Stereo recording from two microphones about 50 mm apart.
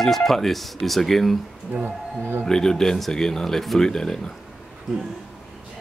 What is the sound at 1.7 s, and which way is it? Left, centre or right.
Speech, right.